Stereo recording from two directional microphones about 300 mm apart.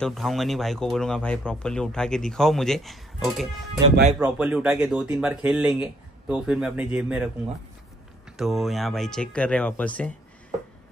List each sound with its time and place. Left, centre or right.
0.0 s speech: centre
8.4 s speech: centre